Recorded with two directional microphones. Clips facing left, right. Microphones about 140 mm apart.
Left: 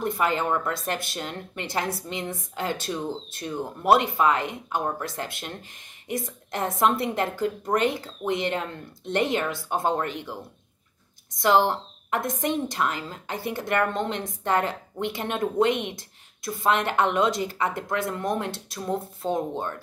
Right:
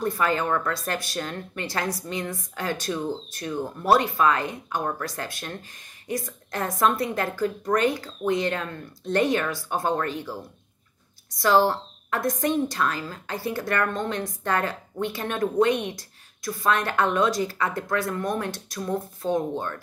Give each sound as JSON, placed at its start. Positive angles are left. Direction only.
{"t": 0.0, "sound": "speech", "side_deg": 20}
{"t": 11.3, "sound": "speech", "side_deg": 20}